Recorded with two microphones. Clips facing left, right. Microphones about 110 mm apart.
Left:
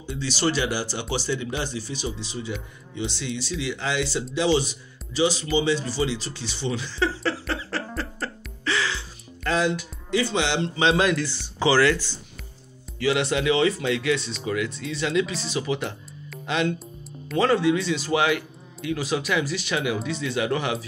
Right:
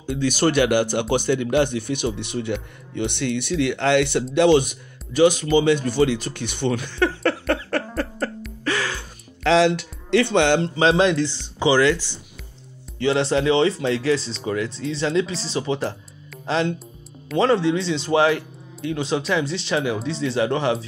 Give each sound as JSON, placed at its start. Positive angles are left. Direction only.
{"t": 0.0, "sound": "speech", "side_deg": -55}
{"t": 8.6, "sound": "music", "side_deg": -50}
{"t": 9.4, "sound": "speech", "side_deg": -90}
{"t": 10.6, "sound": "speech", "side_deg": -35}
{"t": 13.0, "sound": "speech", "side_deg": -30}